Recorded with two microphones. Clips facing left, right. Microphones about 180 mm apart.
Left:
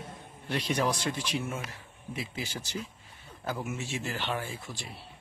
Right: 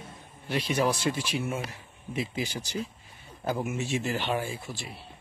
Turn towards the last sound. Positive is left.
turn(degrees=-10)  # may be behind; listen again after turning